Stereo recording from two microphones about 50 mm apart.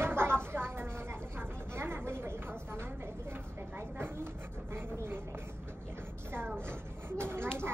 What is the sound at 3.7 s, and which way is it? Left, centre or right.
Speech, right.